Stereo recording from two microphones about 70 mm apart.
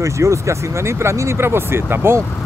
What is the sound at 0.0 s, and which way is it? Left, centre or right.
Speech, right.